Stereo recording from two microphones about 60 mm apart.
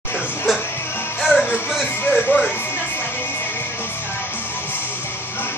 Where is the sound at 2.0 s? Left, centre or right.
Centre.